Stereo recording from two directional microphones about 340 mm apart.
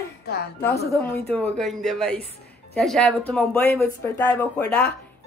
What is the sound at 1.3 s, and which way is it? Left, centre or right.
Speech, centre.